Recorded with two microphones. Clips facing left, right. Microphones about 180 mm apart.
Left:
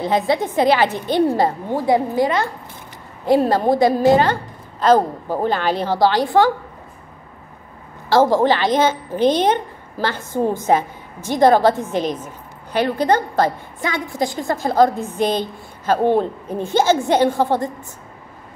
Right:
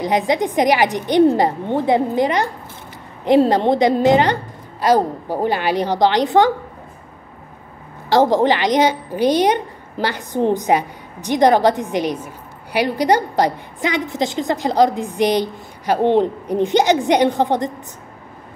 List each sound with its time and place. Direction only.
0.0 s a woman's voice: 15° right (ahead or behind)
8.1 s a woman's voice: 20° right (ahead or behind)